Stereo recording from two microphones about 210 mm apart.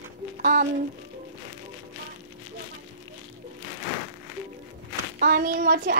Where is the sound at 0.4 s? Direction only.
40° right (ahead or behind).